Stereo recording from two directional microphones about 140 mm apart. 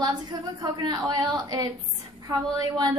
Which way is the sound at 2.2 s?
25° right (ahead or behind).